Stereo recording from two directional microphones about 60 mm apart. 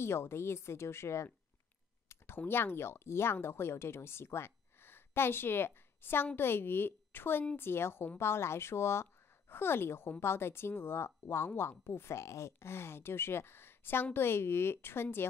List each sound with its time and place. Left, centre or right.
0.0 s a woman's voice: left